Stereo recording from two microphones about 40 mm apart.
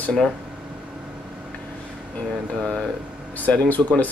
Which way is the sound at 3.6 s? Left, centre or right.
Left.